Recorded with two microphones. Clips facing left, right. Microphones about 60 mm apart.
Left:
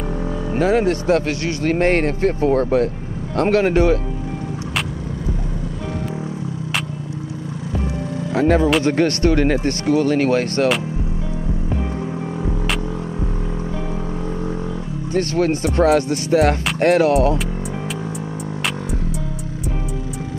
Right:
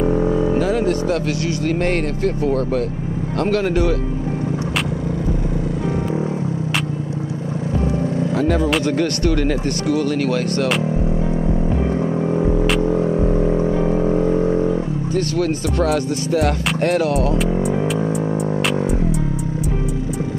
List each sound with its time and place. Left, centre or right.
0.6 s speech: left
8.4 s speech: left
13.1 s vehicle: right
15.1 s speech: left